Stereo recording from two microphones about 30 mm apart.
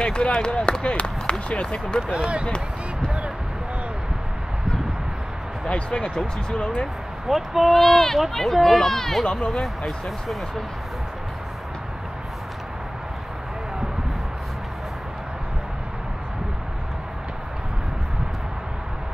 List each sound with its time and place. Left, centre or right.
0.0 s speech: left
5.7 s speech: left
7.2 s speech: centre
7.7 s speech: centre